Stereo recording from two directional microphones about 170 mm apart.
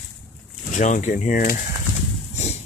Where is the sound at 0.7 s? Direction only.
45° left (ahead or behind).